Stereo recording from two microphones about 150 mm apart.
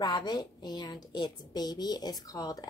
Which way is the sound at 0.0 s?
30° left (ahead or behind).